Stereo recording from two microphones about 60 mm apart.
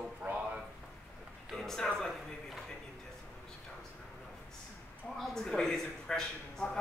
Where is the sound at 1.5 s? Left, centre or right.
Centre.